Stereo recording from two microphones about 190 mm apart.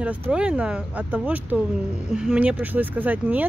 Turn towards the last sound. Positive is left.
turn(degrees=-10)  # may be behind; listen again after turning